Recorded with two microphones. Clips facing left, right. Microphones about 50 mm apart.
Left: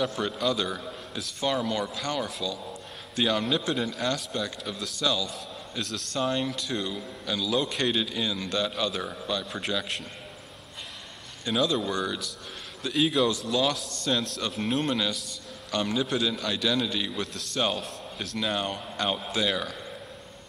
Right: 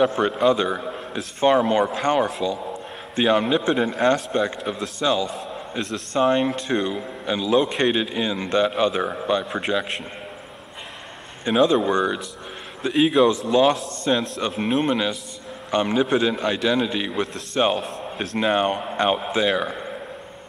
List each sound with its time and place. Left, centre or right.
0.0 s a man's voice: right
11.4 s a man's voice: right